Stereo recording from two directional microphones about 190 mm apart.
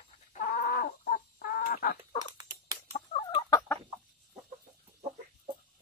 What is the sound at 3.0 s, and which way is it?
Chicken, 30° left (ahead or behind).